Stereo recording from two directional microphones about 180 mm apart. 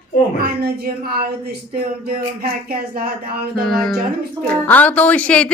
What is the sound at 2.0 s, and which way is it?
Speech, 55° right (ahead or behind).